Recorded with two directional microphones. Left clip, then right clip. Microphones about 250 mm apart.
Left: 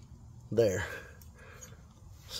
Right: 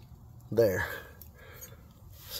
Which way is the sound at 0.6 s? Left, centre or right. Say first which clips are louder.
Right 2 dB; centre.